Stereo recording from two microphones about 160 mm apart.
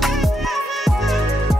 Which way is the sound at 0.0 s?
Centre (ahead or behind).